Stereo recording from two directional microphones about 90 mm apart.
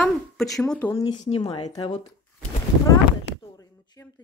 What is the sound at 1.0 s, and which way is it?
Speech, 50° left (ahead or behind).